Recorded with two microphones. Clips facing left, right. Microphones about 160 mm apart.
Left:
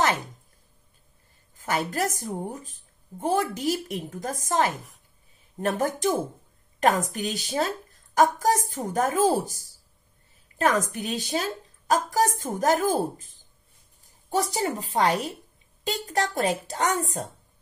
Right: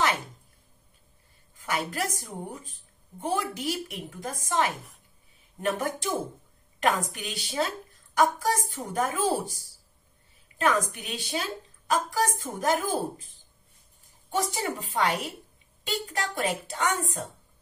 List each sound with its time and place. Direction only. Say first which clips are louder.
1.6 s a woman's voice: left 4 dB; 40° left (ahead or behind)
10.6 s a woman's voice: left 2 dB; 40° left (ahead or behind)
14.3 s a woman's voice: left 3 dB; 35° left (ahead or behind)